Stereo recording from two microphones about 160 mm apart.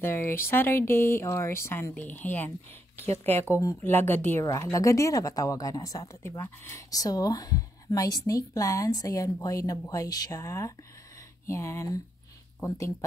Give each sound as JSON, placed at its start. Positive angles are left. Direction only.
{"t": 0.0, "sound": "a woman's voice", "side_deg": 15}